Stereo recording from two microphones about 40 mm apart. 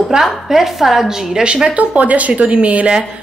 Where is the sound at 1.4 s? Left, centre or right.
Right.